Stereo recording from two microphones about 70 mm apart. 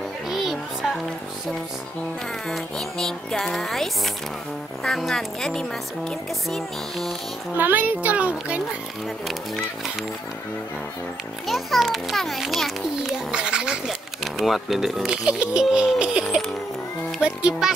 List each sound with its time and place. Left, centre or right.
0.3 s music: centre
2.4 s a child's voice: centre
7.5 s a child's voice: right
11.4 s a child's voice: centre